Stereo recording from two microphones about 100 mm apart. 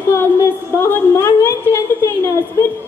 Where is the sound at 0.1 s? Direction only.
25° left (ahead or behind).